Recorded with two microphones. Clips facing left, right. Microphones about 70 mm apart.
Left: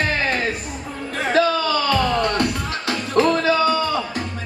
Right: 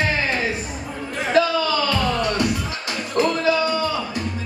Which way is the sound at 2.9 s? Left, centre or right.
Left.